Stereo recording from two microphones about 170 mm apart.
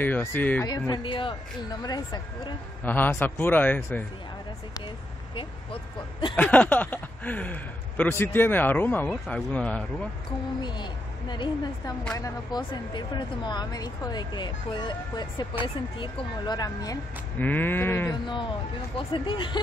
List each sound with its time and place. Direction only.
0.0 s speech: 10° left (ahead or behind)
0.7 s speech: 25° left (ahead or behind)
2.8 s speech: 10° left (ahead or behind)
5.3 s speech: 30° left (ahead or behind)
6.3 s speech: 10° left (ahead or behind)
10.6 s speech: 25° left (ahead or behind)
17.4 s speech: 10° left (ahead or behind)
18.3 s speech: 30° left (ahead or behind)